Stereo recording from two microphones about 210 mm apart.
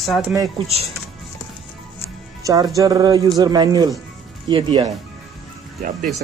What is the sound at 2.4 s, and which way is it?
Speech, 15° right (ahead or behind).